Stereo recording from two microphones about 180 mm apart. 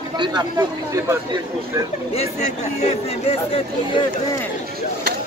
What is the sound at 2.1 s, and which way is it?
Speech, 40° left (ahead or behind).